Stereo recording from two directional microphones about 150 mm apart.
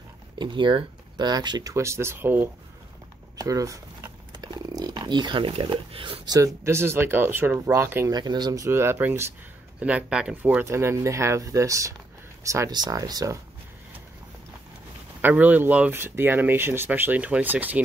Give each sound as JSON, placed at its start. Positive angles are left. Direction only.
{"t": 0.4, "sound": "speech", "side_deg": -30}
{"t": 8.2, "sound": "speech", "side_deg": -30}
{"t": 15.2, "sound": "speech", "side_deg": -10}